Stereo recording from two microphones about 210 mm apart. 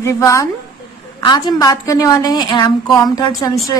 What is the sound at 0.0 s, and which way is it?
A woman's voice, 15° left (ahead or behind).